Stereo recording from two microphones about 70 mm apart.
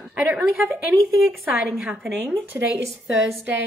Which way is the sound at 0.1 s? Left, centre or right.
Right.